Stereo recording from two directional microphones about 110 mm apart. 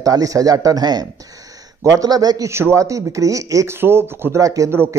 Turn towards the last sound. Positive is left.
turn(degrees=-25)  # may be behind; listen again after turning